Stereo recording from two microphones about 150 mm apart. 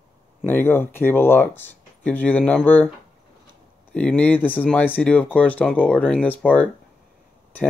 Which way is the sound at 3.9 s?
10° left (ahead or behind).